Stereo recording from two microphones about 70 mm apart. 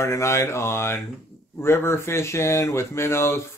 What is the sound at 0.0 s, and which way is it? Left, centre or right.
Speech, left.